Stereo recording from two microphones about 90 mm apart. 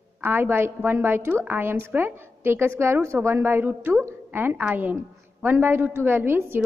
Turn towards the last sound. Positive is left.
turn(degrees=-25)  # may be behind; listen again after turning